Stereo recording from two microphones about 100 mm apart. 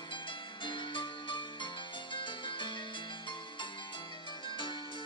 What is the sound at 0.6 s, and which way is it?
Music, 50° left (ahead or behind).